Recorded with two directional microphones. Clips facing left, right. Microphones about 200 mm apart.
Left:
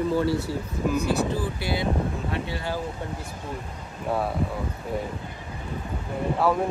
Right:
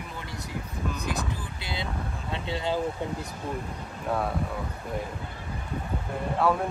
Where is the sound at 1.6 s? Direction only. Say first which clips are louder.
Left 7 dB; 20° right (ahead or behind).